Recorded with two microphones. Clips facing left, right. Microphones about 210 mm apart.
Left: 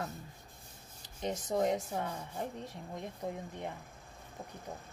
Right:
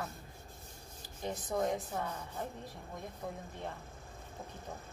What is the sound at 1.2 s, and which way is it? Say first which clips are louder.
A woman's voice: left 3 dB; 20° left (ahead or behind).